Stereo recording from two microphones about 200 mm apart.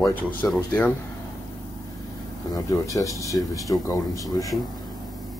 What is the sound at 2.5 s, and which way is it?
Speech, 15° left (ahead or behind).